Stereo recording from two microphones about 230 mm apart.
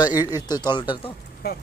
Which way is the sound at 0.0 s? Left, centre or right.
Centre.